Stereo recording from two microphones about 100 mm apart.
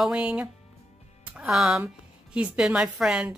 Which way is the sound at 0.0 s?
10° right (ahead or behind).